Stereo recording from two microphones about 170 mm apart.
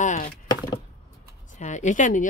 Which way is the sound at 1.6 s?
45° left (ahead or behind).